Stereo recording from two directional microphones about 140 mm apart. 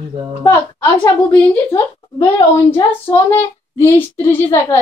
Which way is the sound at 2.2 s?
30° left (ahead or behind).